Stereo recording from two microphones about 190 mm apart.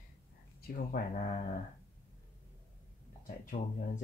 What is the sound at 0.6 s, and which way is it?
Speech, 45° left (ahead or behind).